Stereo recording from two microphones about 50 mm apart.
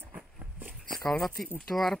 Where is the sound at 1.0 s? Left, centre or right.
Centre.